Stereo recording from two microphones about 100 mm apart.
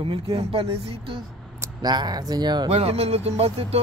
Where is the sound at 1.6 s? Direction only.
40° right (ahead or behind).